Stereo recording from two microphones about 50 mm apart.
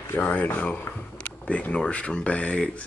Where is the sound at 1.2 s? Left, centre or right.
Left.